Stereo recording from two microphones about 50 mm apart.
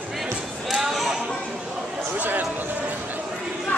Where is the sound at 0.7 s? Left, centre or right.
Centre.